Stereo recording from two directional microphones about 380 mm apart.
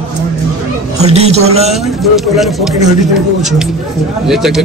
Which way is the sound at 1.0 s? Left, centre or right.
Centre.